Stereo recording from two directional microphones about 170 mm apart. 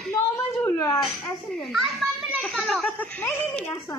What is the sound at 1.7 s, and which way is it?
Children playing, centre (ahead or behind).